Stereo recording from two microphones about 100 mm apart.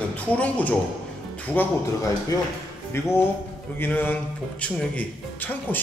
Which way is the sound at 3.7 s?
20° left (ahead or behind).